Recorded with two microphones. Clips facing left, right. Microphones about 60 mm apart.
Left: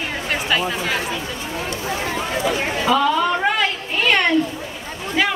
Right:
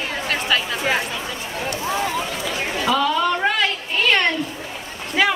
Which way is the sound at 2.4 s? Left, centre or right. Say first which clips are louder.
Left 4 dB; left.